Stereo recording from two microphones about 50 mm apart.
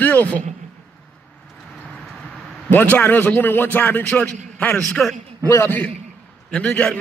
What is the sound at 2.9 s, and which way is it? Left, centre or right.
Speech, left.